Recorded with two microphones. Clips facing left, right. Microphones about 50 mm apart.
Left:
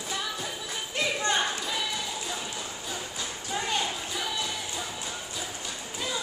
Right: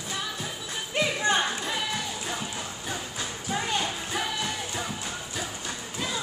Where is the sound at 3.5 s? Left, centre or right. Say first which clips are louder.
Right 1 dB; centre.